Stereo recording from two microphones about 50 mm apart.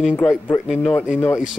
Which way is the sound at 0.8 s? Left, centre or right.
Left.